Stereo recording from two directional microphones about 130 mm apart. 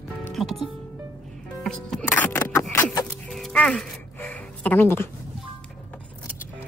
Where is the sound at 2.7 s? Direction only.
25° left (ahead or behind).